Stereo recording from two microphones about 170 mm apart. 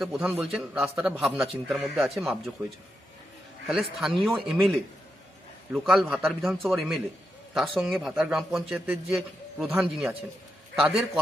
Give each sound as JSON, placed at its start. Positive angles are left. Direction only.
{"t": 0.0, "sound": "a man's voice", "side_deg": 0}
{"t": 3.6, "sound": "a man's voice", "side_deg": 0}